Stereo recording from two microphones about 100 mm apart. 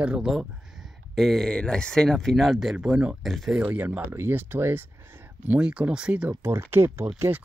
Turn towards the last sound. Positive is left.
turn(degrees=-25)  # may be behind; listen again after turning